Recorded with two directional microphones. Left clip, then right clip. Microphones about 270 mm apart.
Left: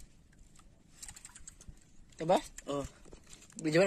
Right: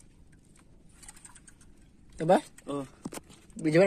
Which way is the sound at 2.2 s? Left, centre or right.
Right.